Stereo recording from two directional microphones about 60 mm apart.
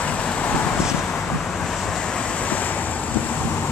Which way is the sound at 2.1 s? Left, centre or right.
Left.